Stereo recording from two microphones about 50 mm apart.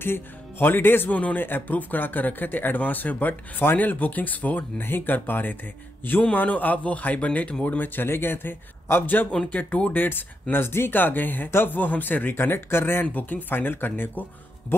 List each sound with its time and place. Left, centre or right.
0.0 s speech: left
1.1 s speech: left
4.8 s speech: left
13.0 s speech: left